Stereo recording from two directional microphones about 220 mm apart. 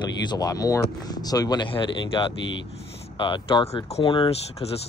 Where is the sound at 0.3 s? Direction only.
15° left (ahead or behind).